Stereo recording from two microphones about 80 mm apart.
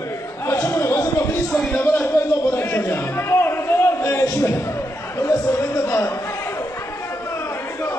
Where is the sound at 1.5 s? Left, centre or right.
Centre.